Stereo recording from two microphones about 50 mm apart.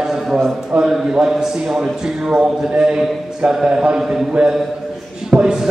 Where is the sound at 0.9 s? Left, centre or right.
Centre.